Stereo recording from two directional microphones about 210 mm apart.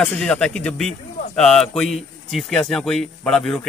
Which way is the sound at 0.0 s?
5° left (ahead or behind).